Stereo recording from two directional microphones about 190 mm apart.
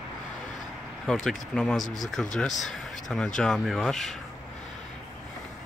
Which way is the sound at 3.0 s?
5° left (ahead or behind).